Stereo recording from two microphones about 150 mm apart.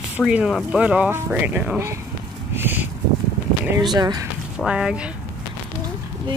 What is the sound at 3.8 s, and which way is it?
Speech, 30° right (ahead or behind).